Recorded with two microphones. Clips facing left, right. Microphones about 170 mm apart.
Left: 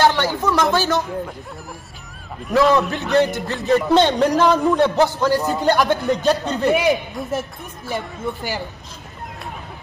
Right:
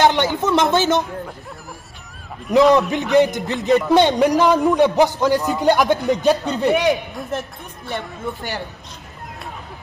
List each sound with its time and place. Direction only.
0.0 s speech: 20° right (ahead or behind)
2.5 s a man's voice: 15° right (ahead or behind)
6.7 s speech: centre (ahead or behind)